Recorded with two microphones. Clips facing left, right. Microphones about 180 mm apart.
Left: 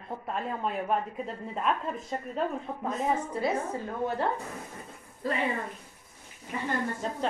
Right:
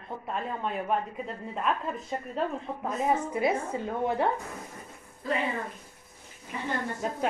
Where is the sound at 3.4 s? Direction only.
20° right (ahead or behind).